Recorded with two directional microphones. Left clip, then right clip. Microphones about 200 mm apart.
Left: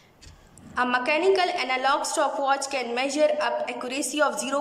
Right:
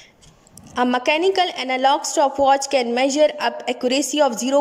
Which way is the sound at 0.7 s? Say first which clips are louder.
Right 5 dB; 30° right (ahead or behind).